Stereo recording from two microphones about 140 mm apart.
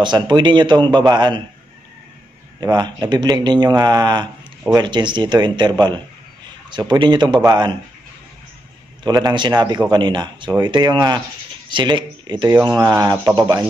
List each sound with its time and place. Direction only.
0.0 s speech: 35° right (ahead or behind)
2.6 s speech: 30° right (ahead or behind)
9.0 s speech: 30° right (ahead or behind)